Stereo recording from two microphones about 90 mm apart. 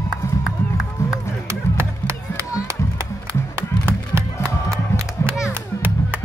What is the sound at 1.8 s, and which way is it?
Music, 30° right (ahead or behind).